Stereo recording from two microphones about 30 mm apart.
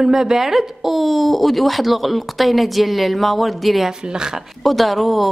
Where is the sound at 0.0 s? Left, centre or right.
Centre.